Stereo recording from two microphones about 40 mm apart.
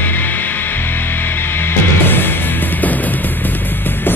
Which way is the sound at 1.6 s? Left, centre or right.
Left.